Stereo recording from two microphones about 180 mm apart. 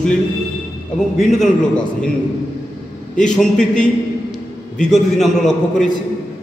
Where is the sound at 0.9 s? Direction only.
Centre (ahead or behind).